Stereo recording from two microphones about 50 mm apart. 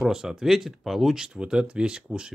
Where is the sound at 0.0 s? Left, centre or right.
Centre.